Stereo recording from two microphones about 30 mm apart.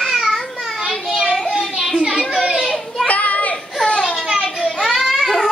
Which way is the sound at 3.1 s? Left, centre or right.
Left.